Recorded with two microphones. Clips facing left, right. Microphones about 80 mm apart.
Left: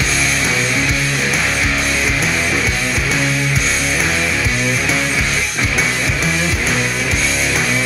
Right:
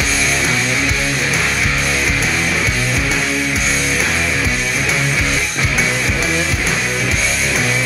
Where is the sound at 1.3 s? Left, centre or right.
Centre.